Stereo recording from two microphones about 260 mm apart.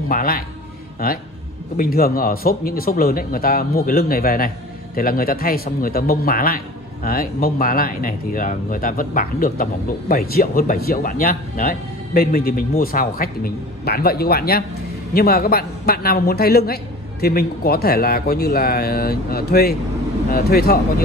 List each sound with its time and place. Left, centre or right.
0.1 s a man's voice: left